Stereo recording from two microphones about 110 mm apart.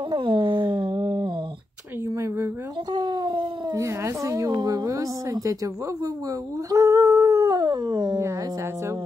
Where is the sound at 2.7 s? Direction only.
40° right (ahead or behind).